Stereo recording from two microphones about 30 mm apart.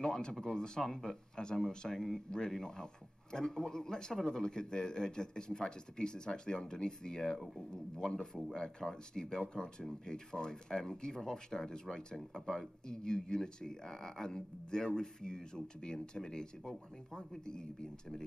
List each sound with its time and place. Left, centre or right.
0.0 s speech: left